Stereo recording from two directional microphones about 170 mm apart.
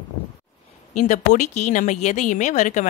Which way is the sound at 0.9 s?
45° left (ahead or behind).